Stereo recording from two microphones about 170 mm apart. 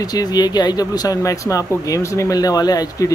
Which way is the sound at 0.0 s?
25° left (ahead or behind).